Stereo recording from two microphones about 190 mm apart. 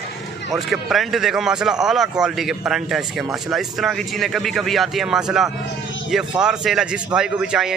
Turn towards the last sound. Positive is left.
turn(degrees=-5)  # may be behind; listen again after turning